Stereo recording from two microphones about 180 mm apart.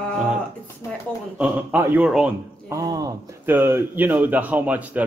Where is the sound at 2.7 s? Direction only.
20° right (ahead or behind).